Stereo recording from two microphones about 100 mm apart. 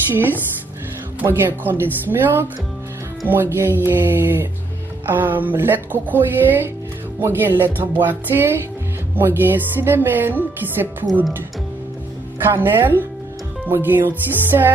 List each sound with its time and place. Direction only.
0.1 s speech: 20° right (ahead or behind)
12.4 s speech: 20° right (ahead or behind)